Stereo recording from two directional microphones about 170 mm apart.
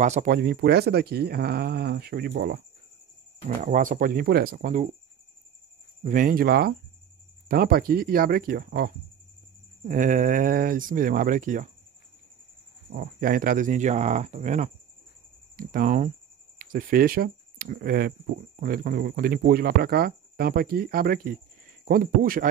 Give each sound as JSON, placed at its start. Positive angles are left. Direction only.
{"t": 0.0, "sound": "speech", "side_deg": -45}
{"t": 3.4, "sound": "speech", "side_deg": -55}
{"t": 6.0, "sound": "speech", "side_deg": -50}
{"t": 9.8, "sound": "speech", "side_deg": -50}
{"t": 12.9, "sound": "speech", "side_deg": -60}